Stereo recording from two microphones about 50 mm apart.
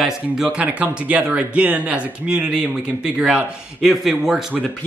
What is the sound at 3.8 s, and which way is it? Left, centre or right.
Speech, centre.